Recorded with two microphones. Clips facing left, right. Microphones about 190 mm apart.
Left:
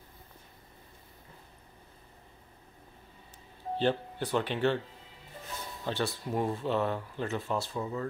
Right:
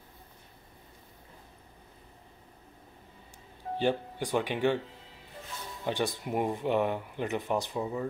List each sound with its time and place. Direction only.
3.7 s speech: 15° right (ahead or behind)
5.9 s speech: 15° right (ahead or behind)